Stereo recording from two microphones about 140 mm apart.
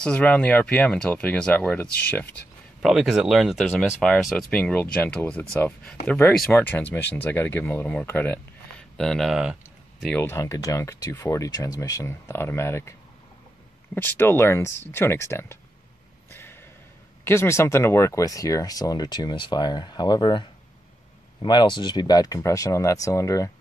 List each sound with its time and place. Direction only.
0.0 s speech: 10° left (ahead or behind)
2.8 s speech: centre (ahead or behind)
10.1 s speech: 20° left (ahead or behind)
13.9 s speech: 15° left (ahead or behind)
16.3 s a sound: 15° left (ahead or behind)
17.2 s speech: 20° left (ahead or behind)